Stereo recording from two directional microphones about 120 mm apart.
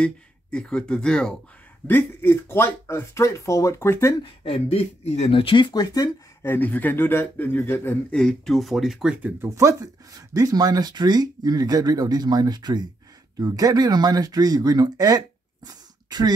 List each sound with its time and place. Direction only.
0.0 s speech: 10° left (ahead or behind)
1.9 s speech: 15° left (ahead or behind)
4.2 s speech: 55° left (ahead or behind)
5.3 s speech: 45° left (ahead or behind)
6.4 s speech: 15° left (ahead or behind)
8.1 s speech: 5° left (ahead or behind)
9.4 s speech: 25° right (ahead or behind)